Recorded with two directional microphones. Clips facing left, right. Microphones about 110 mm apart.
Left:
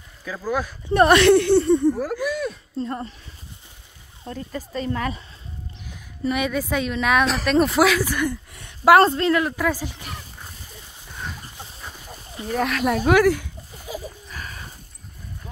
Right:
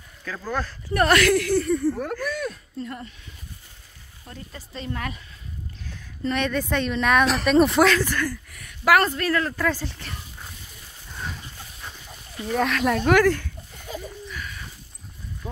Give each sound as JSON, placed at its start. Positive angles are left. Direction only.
{"t": 0.2, "sound": "speech", "side_deg": 10}
{"t": 0.8, "sound": "speech", "side_deg": 25}
{"t": 2.0, "sound": "speech", "side_deg": 5}
{"t": 2.8, "sound": "speech", "side_deg": 35}
{"t": 4.3, "sound": "speech", "side_deg": 45}
{"t": 5.9, "sound": "speech", "side_deg": 10}
{"t": 9.3, "sound": "speech", "side_deg": 15}
{"t": 12.4, "sound": "speech", "side_deg": 0}
{"t": 14.3, "sound": "a sound", "side_deg": 40}